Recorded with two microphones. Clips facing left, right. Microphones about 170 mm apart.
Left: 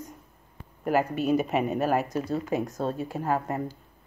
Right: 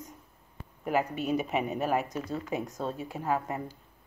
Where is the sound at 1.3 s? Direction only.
45° left (ahead or behind).